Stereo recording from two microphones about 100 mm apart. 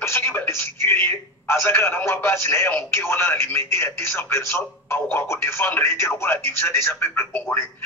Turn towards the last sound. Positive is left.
turn(degrees=15)  # may be behind; listen again after turning